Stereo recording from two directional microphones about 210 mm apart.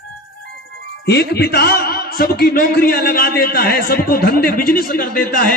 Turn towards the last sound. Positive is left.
turn(degrees=45)  # may be behind; listen again after turning